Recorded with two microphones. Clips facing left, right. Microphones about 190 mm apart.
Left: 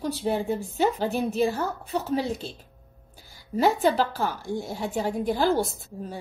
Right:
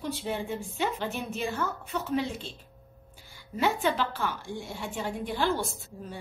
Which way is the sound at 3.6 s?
40° left (ahead or behind).